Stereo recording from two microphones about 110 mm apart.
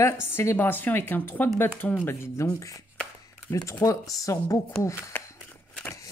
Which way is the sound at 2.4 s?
25° left (ahead or behind).